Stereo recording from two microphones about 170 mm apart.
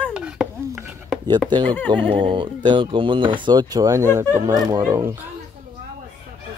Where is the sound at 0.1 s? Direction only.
5° right (ahead or behind).